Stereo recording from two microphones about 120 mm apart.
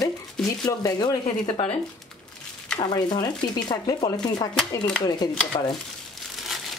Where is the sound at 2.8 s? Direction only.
35° left (ahead or behind).